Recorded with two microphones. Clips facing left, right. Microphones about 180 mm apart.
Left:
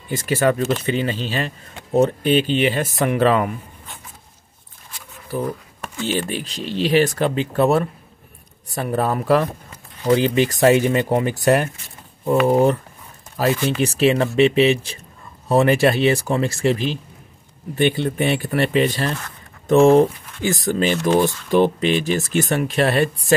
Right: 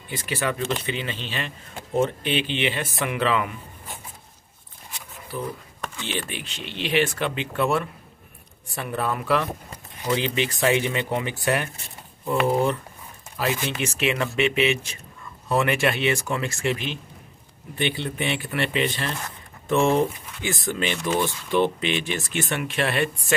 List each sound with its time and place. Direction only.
0.1 s speech: 45° left (ahead or behind)
5.9 s speech: 40° left (ahead or behind)
17.7 s speech: 45° left (ahead or behind)